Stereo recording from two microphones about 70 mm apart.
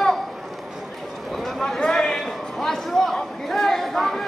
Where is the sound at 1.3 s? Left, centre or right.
Centre.